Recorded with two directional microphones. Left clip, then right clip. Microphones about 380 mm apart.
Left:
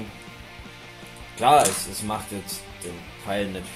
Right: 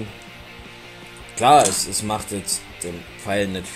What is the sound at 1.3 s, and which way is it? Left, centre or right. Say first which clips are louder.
Speech: right 4 dB; right.